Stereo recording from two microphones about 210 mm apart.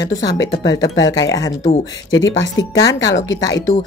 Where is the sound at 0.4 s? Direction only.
15° left (ahead or behind).